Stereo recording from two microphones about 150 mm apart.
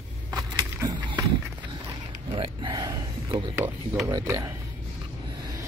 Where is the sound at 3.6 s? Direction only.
15° right (ahead or behind).